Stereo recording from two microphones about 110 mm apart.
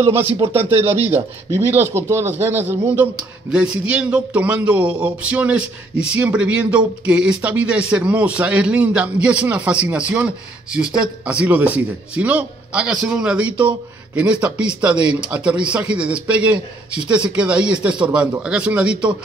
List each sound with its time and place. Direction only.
0.6 s speech: 60° right (ahead or behind)
1.5 s speech: 20° right (ahead or behind)
3.2 s a man's voice: 10° right (ahead or behind)